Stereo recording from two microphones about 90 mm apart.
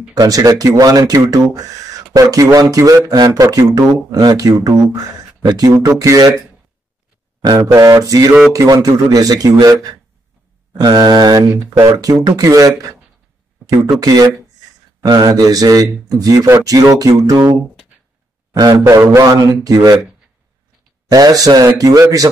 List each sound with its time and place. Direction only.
0.1 s speech: 45° right (ahead or behind)
7.4 s speech: 45° right (ahead or behind)
10.8 s speech: 50° right (ahead or behind)
18.5 s speech: 45° right (ahead or behind)
21.1 s speech: 45° right (ahead or behind)